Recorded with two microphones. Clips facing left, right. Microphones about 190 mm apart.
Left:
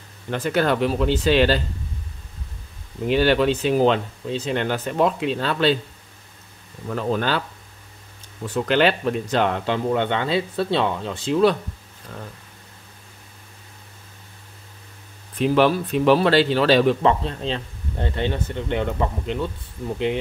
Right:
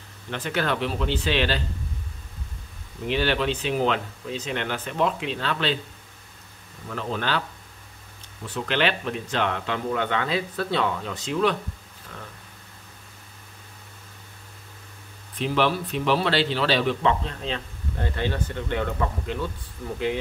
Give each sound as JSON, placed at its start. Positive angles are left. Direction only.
{"t": 0.3, "sound": "speech", "side_deg": 40}
{"t": 3.1, "sound": "speech", "side_deg": 40}
{"t": 7.0, "sound": "speech", "side_deg": 40}
{"t": 8.6, "sound": "speech", "side_deg": 40}
{"t": 15.3, "sound": "speech", "side_deg": 45}